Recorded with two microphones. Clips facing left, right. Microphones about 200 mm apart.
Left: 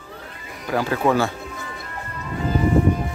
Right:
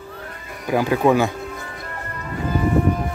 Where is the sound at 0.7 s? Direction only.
15° right (ahead or behind).